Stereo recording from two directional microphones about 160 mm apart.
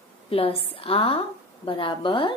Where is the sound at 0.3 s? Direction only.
35° left (ahead or behind).